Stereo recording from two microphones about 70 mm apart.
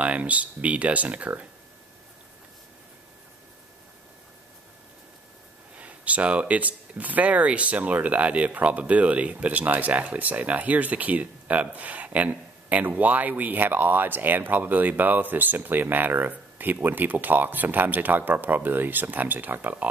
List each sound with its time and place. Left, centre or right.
0.0 s speech: centre
5.8 s speech: right